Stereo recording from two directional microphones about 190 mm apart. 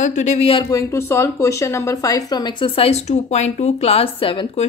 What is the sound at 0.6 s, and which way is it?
A woman's voice, 15° left (ahead or behind).